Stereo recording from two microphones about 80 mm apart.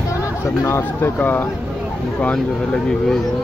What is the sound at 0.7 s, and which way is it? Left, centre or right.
Speech, left.